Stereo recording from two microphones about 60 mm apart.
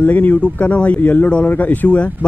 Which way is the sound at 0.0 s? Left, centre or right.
Left.